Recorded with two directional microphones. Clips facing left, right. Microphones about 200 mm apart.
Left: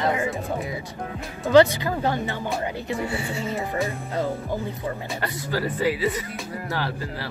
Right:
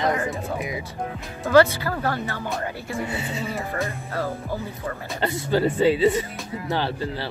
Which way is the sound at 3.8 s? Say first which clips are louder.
Left 2 dB; 15° left (ahead or behind).